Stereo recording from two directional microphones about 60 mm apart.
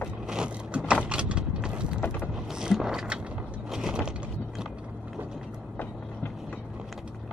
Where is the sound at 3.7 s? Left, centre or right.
Centre.